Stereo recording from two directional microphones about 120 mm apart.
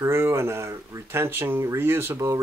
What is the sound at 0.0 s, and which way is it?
Speech, 20° right (ahead or behind).